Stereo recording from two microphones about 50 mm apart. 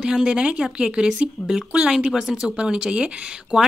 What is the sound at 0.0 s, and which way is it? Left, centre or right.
A woman's voice, centre.